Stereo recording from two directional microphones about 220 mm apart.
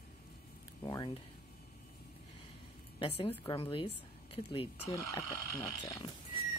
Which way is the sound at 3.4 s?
25° left (ahead or behind).